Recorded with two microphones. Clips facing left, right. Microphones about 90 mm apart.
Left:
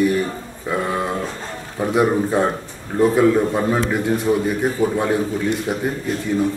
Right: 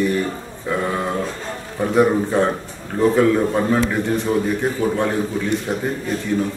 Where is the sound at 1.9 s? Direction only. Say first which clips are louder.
Right 1 dB; 10° left (ahead or behind).